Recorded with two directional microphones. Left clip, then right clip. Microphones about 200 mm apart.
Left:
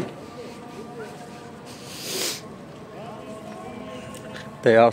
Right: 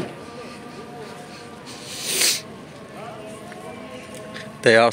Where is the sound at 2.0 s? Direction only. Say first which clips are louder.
Right 6 dB; 20° left (ahead or behind).